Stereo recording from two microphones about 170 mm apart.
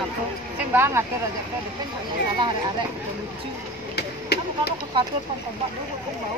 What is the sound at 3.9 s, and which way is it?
Chop, 75° left (ahead or behind).